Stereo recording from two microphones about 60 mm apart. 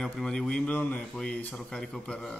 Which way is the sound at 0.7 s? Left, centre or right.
Left.